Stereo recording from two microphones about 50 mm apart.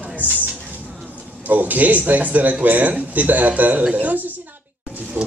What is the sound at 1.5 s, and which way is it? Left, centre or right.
Speech, right.